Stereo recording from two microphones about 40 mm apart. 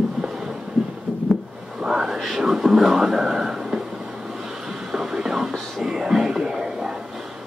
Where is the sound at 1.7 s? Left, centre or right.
Centre.